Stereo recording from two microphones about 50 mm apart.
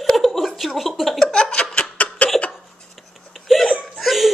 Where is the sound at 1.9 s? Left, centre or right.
Left.